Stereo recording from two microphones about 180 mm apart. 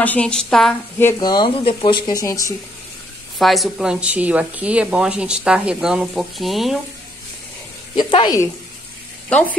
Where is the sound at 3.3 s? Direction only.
Centre (ahead or behind).